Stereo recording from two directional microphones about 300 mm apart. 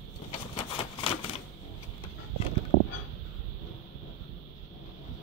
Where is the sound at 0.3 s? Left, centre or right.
Centre.